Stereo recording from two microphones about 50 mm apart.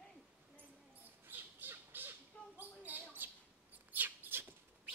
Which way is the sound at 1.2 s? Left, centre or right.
Right.